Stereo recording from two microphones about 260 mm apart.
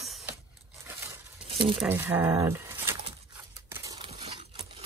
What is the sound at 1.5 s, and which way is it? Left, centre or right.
Speech, centre.